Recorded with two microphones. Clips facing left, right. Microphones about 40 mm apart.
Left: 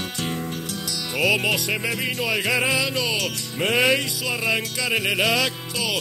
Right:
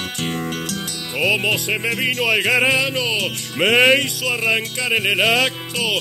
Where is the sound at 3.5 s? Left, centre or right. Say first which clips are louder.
Right 6 dB; right.